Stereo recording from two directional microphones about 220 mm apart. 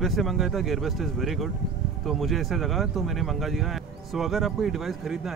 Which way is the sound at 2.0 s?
Centre (ahead or behind).